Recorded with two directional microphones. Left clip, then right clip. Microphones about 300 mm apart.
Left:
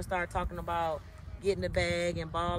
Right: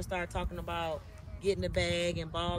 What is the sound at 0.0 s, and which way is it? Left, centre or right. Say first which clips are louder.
Speech: left 3 dB; centre.